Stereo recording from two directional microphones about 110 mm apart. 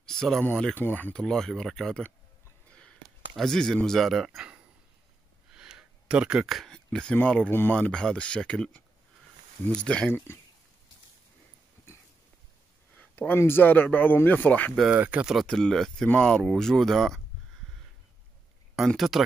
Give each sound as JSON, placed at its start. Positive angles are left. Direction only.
{"t": 0.0, "sound": "a sound", "side_deg": 5}
{"t": 0.7, "sound": "speech", "side_deg": 15}
{"t": 3.3, "sound": "speech", "side_deg": 5}
{"t": 13.1, "sound": "speech", "side_deg": 15}
{"t": 15.0, "sound": "speech", "side_deg": -10}
{"t": 15.3, "sound": "speech", "side_deg": 5}
{"t": 18.9, "sound": "speech", "side_deg": 0}